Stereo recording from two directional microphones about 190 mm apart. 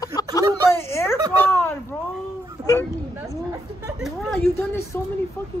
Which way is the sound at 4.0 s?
Centre (ahead or behind).